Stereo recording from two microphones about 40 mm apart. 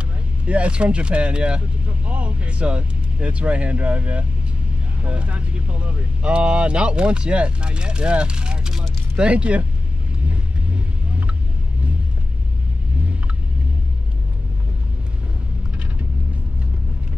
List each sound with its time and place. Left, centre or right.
0.5 s speech: right
10.2 s vehicle: right